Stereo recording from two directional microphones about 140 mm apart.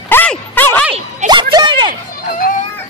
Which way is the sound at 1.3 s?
30° right (ahead or behind).